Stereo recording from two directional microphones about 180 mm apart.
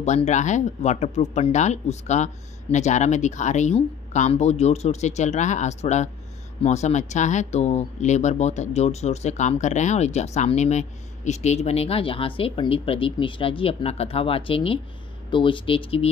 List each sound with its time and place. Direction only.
0.0 s speech: 40° left (ahead or behind)